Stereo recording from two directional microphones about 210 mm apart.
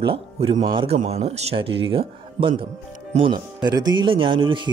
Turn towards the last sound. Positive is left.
turn(degrees=-25)  # may be behind; listen again after turning